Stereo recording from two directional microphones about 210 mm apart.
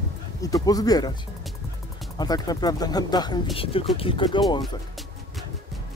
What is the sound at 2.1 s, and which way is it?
Speech, 20° left (ahead or behind).